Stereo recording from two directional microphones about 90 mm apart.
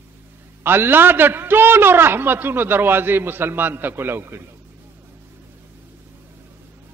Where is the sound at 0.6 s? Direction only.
25° right (ahead or behind).